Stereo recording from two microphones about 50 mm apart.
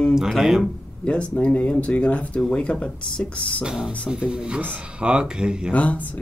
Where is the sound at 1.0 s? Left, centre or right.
Left.